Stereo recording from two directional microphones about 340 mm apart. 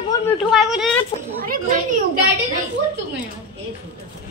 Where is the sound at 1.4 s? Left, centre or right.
Right.